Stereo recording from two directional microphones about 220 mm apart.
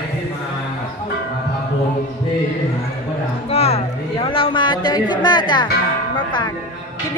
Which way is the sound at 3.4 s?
30° left (ahead or behind).